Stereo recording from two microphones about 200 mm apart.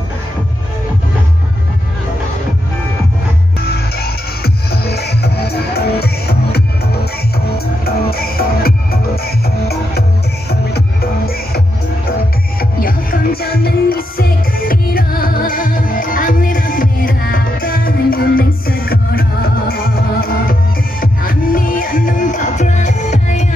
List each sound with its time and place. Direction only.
3.6 s music: 50° left (ahead or behind)